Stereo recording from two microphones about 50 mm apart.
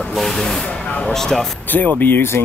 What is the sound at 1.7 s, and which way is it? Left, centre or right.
Speech, left.